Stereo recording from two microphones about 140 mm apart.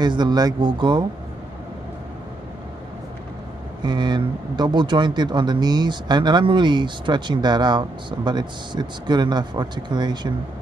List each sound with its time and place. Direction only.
0.0 s speech: 30° right (ahead or behind)
3.8 s speech: 35° right (ahead or behind)